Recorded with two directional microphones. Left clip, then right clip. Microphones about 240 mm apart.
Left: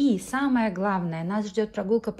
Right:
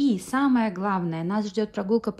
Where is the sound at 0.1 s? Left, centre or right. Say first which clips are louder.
Right 2 dB; centre.